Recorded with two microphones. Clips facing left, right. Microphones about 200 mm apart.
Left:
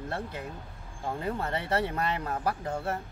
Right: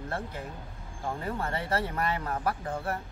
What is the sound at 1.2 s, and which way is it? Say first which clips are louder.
Speech: left 2 dB; 20° left (ahead or behind).